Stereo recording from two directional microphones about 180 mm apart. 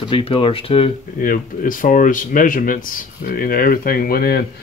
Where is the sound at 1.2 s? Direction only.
50° left (ahead or behind).